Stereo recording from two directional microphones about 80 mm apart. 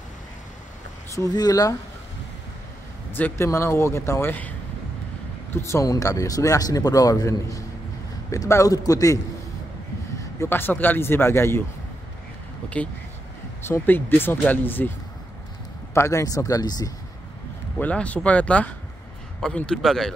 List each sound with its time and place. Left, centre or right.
1.3 s a man's voice: left
3.1 s speech: left
5.5 s speech: left
5.9 s a man's voice: left
10.4 s a man's voice: left
13.7 s a man's voice: left
15.9 s a man's voice: left
17.7 s a man's voice: centre